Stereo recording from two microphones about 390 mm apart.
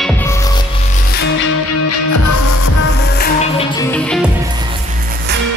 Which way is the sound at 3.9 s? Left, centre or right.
Centre.